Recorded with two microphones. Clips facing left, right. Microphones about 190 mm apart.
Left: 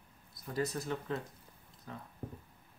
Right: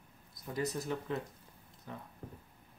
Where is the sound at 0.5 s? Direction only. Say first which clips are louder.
Even; 20° right (ahead or behind).